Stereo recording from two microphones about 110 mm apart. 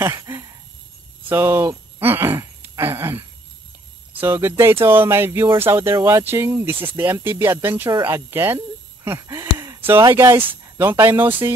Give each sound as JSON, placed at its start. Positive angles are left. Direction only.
{"t": 0.0, "sound": "a sound", "side_deg": -30}
{"t": 1.3, "sound": "speech", "side_deg": -20}
{"t": 4.2, "sound": "speech", "side_deg": -20}